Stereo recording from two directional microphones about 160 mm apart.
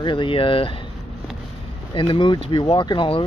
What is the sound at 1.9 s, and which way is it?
Speech, 30° left (ahead or behind).